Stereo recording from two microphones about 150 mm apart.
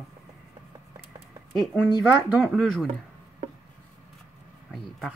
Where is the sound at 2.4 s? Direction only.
Centre (ahead or behind).